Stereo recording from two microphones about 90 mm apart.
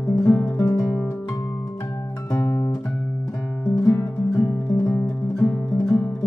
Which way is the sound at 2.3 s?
20° left (ahead or behind).